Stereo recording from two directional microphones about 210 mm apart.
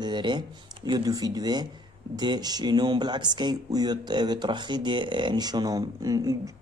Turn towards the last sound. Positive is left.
turn(degrees=-15)  # may be behind; listen again after turning